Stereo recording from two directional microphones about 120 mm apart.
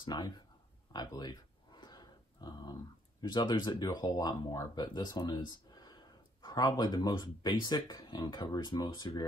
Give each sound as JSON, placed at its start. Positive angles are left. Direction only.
{"t": 0.0, "sound": "speech", "side_deg": 35}